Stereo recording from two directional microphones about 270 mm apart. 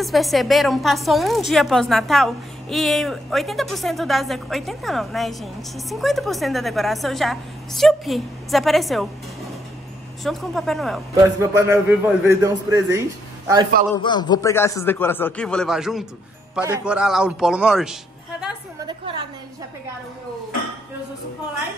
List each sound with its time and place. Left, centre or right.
0.0 s a woman's voice: centre
11.3 s a man's voice: centre
14.0 s a woman's voice: centre
18.9 s a man's voice: centre